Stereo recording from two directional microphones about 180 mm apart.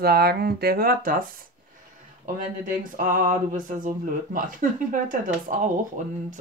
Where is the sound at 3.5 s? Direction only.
45° right (ahead or behind).